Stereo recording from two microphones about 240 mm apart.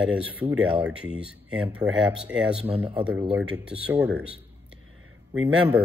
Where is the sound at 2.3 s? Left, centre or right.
Centre.